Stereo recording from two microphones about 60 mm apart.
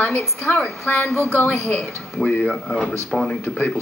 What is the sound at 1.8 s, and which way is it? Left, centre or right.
Speech, centre.